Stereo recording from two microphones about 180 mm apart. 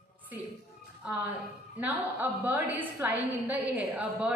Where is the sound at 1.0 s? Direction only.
5° right (ahead or behind).